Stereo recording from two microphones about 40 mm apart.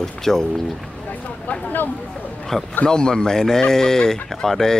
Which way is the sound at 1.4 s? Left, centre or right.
Left.